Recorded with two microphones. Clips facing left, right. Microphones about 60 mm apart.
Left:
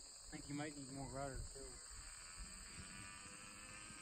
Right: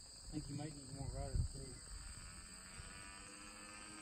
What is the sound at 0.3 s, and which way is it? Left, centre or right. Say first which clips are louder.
Speech: even; left.